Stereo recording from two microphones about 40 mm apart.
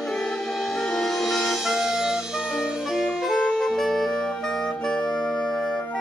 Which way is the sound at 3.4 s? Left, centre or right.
Centre.